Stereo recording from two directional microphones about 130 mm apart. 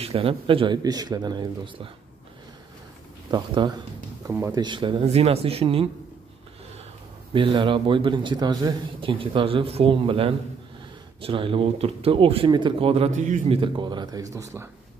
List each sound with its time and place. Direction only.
0.0 s speech: 50° right (ahead or behind)
0.8 s a man's voice: 30° right (ahead or behind)
3.3 s a man's voice: 35° right (ahead or behind)
4.3 s a man's voice: 25° right (ahead or behind)
5.0 s speech: 55° right (ahead or behind)
7.3 s a man's voice: 40° right (ahead or behind)
13.5 s speech: 40° right (ahead or behind); by 14.7 s 20° right (ahead or behind)